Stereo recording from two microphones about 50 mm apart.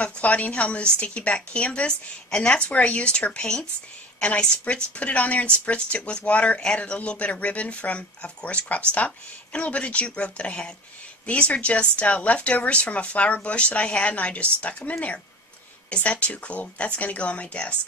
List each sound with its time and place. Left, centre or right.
0.0 s speech: left